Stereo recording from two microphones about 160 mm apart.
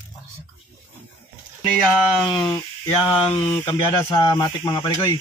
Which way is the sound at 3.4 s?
10° left (ahead or behind).